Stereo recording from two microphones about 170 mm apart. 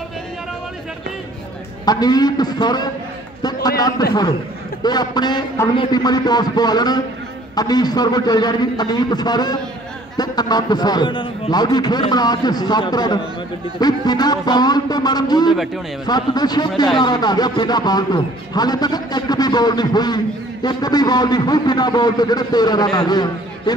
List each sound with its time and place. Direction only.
1.9 s a man's voice: 25° left (ahead or behind)
15.5 s speech: centre (ahead or behind)
16.1 s a man's voice: 25° left (ahead or behind)